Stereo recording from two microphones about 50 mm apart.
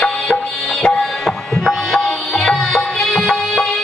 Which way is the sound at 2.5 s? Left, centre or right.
Centre.